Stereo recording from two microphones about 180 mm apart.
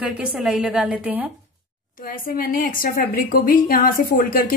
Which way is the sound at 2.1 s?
50° left (ahead or behind).